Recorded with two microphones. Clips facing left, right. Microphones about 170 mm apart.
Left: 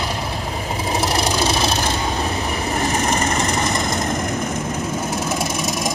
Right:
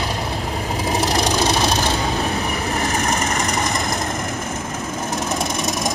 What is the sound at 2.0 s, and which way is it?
Vehicle, centre (ahead or behind).